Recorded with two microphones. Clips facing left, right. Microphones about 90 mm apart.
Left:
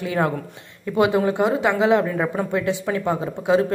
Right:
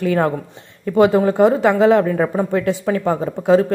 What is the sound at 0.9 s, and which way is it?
A woman's voice, 35° right (ahead or behind).